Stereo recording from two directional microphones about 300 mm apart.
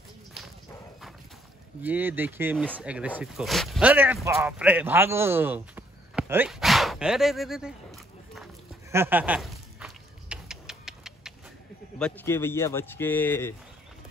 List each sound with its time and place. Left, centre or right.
1.8 s speech: centre
8.9 s a sound: centre
12.0 s speech: centre